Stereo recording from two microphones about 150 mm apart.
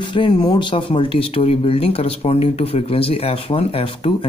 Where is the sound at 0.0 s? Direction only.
30° left (ahead or behind).